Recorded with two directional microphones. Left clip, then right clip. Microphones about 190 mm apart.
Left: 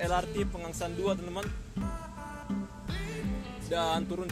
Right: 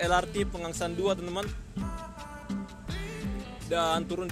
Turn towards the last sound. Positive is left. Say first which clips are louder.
# right 3 dB
turn(degrees=-30)  # may be behind; listen again after turning